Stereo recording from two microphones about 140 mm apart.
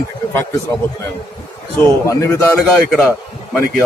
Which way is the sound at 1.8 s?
20° left (ahead or behind).